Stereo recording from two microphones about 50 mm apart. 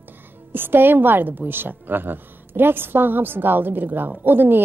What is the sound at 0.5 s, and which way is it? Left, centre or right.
A woman's voice, right.